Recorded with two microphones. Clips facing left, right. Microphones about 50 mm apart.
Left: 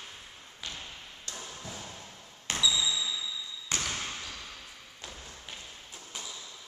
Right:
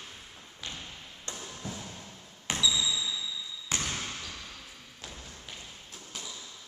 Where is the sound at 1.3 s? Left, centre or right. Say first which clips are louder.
Right 1 dB; right.